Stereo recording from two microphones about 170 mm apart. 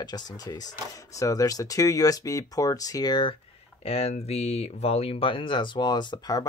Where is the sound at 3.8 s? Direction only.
35° left (ahead or behind).